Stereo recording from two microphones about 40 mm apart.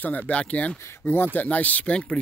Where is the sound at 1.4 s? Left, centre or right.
Left.